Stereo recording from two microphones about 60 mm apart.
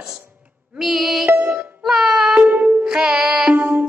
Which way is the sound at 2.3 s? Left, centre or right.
Right.